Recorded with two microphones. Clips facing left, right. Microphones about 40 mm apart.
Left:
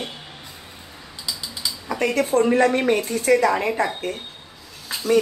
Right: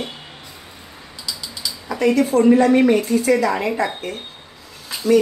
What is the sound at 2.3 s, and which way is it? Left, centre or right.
Speech, left.